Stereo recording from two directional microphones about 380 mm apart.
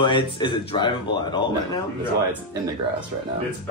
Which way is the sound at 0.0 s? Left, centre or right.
Centre.